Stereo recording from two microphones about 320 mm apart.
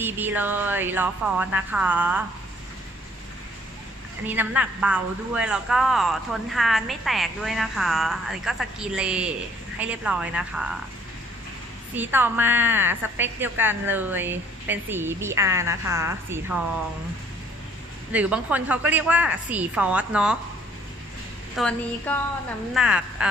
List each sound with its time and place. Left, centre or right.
0.0 s speech: centre
4.3 s speech: centre
11.9 s a woman's voice: centre
18.1 s speech: centre
21.5 s speech: centre